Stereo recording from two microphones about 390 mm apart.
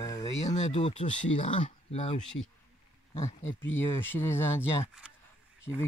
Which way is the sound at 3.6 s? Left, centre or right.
Centre.